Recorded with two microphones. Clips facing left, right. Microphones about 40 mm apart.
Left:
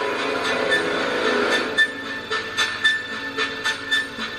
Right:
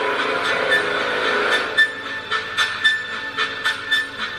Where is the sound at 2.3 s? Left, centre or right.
Right.